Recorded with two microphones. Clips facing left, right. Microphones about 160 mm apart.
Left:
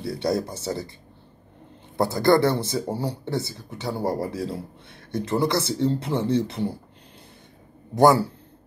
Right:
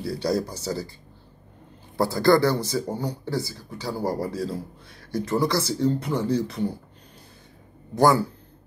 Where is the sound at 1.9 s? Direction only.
20° left (ahead or behind).